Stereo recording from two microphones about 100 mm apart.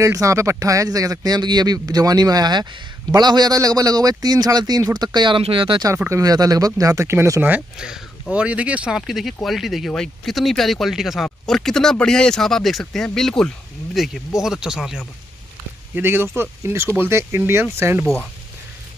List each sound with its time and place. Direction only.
0.0 s speech: 30° right (ahead or behind); by 5.4 s 45° right (ahead or behind)
5.4 s speech: 60° right (ahead or behind)
6.0 s speech: 35° right (ahead or behind)
7.4 s speech: 10° right (ahead or behind)
15.9 s speech: 25° right (ahead or behind)